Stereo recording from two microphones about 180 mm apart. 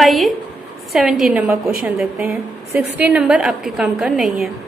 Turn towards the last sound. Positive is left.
turn(degrees=0)  # may be behind; listen again after turning